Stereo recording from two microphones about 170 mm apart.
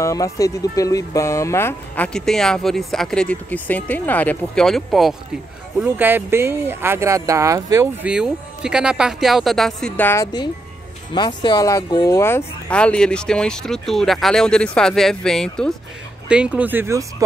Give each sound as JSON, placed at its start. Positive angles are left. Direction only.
{"t": 0.0, "sound": "speech", "side_deg": 20}
{"t": 2.1, "sound": "speech", "side_deg": 5}
{"t": 5.9, "sound": "speech", "side_deg": -10}
{"t": 10.2, "sound": "speech", "side_deg": 25}
{"t": 16.3, "sound": "speech", "side_deg": -5}